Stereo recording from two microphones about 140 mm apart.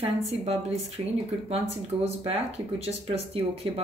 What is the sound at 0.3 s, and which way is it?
Speech, 50° right (ahead or behind).